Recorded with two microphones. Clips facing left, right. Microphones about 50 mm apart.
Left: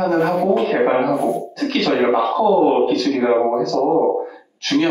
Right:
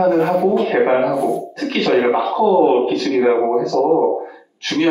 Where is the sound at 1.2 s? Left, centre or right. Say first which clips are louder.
Right 1 dB; left.